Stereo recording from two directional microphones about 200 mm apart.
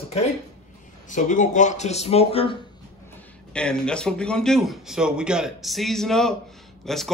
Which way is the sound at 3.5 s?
5° left (ahead or behind).